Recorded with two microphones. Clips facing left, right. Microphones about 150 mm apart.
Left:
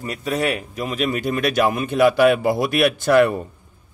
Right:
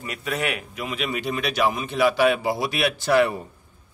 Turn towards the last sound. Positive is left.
turn(degrees=50)  # may be behind; listen again after turning